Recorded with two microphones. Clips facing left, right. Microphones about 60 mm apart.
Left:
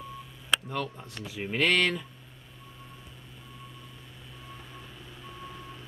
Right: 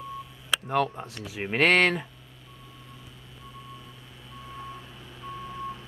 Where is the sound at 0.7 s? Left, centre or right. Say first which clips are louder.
Right 8 dB; right.